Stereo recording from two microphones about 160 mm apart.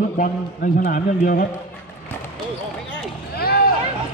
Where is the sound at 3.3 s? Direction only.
75° left (ahead or behind).